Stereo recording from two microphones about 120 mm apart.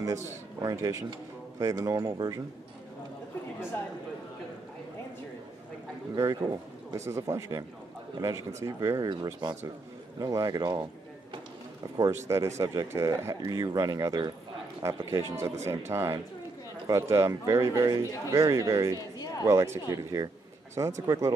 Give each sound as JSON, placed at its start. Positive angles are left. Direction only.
{"t": 0.0, "sound": "a man's voice", "side_deg": -25}
{"t": 6.1, "sound": "speech", "side_deg": -25}
{"t": 9.1, "sound": "speech", "side_deg": -35}
{"t": 12.3, "sound": "speech", "side_deg": -25}
{"t": 19.1, "sound": "a sound", "side_deg": 30}
{"t": 19.4, "sound": "speech", "side_deg": -25}